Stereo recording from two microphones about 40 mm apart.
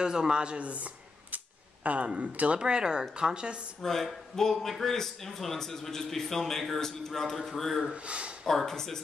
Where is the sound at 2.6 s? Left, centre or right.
Centre.